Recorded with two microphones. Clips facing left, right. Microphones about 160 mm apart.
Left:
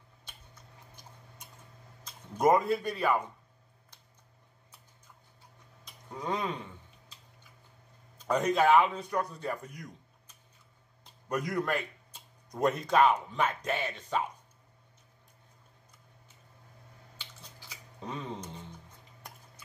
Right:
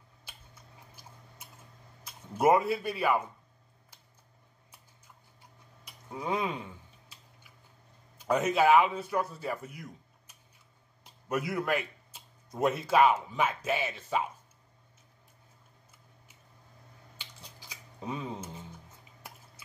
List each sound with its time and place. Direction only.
0.2 s tick-tock: 10° right (ahead or behind)
2.0 s speech: 5° right (ahead or behind)
5.9 s a sound: 10° right (ahead or behind)
8.3 s a man's voice: 5° right (ahead or behind)
17.2 s scissors: 15° right (ahead or behind)